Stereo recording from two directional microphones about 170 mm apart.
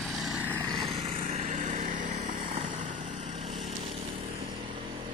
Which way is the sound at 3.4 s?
Centre (ahead or behind).